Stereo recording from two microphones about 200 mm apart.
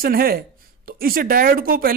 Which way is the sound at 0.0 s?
50° right (ahead or behind).